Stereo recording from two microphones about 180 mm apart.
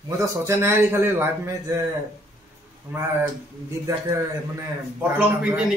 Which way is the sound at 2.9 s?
10° right (ahead or behind).